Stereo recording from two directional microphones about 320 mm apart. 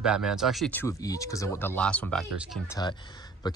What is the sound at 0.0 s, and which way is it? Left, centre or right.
Speech, centre.